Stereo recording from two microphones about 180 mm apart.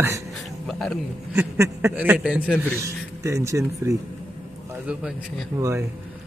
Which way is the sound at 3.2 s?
15° right (ahead or behind).